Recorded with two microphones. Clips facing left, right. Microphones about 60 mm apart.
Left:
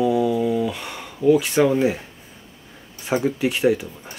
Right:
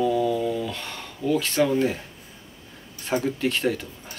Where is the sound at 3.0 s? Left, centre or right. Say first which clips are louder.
Left 3 dB; centre.